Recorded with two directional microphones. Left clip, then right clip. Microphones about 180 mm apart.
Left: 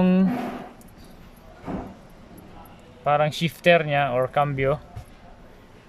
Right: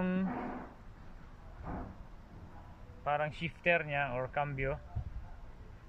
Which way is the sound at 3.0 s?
30° left (ahead or behind).